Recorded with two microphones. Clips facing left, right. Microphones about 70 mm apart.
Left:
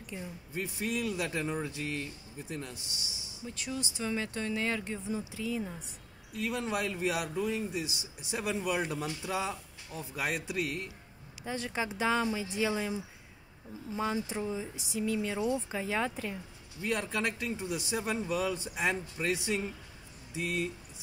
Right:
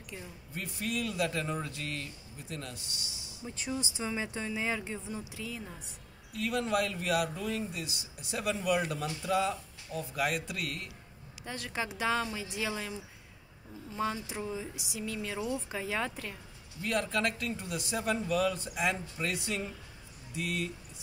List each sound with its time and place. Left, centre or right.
0.1 s speech: centre
2.7 s a man's voice: right
4.0 s speech: centre
13.9 s speech: centre